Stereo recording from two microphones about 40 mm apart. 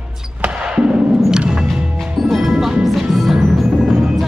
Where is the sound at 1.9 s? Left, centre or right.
Centre.